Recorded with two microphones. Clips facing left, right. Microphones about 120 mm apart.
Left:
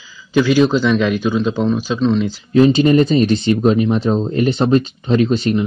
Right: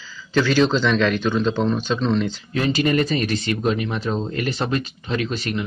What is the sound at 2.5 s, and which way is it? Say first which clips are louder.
Speech: left 10 dB; 25° left (ahead or behind).